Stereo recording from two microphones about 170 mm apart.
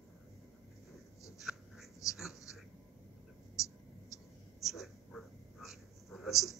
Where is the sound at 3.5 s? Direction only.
20° left (ahead or behind).